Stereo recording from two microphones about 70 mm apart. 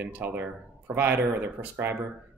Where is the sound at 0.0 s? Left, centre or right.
Right.